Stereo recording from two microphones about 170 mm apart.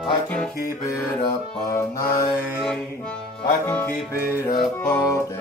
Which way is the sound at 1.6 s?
15° left (ahead or behind).